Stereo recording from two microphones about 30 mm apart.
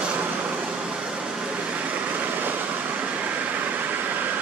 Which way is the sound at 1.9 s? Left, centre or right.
Right.